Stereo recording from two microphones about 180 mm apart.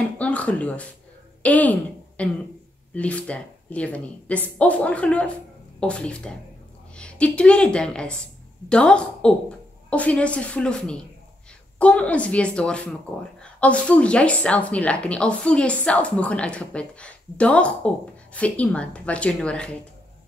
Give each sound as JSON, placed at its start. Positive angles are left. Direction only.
{"t": 0.2, "sound": "a woman's voice", "side_deg": 5}